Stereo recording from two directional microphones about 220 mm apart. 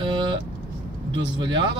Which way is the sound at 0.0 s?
20° right (ahead or behind).